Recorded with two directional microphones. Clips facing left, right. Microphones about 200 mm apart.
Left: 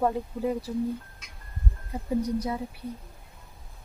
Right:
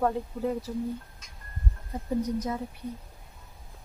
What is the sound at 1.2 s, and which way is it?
Music, 65° left (ahead or behind).